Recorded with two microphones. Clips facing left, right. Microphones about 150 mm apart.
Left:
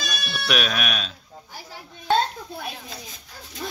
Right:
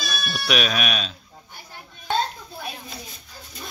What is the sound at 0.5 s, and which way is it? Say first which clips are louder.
Speech: right 1 dB; centre (ahead or behind).